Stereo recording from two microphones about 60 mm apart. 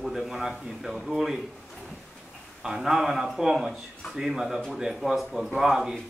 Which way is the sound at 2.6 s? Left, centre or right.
Centre.